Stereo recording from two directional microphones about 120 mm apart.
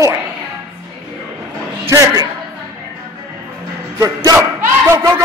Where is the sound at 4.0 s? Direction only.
30° right (ahead or behind).